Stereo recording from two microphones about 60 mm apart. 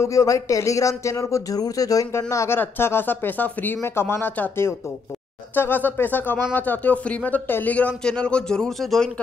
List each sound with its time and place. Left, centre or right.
0.0 s speech: left
2.6 s speech: left
8.0 s speech: centre